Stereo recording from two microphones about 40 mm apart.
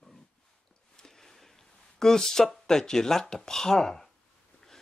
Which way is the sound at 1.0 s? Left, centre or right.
Centre.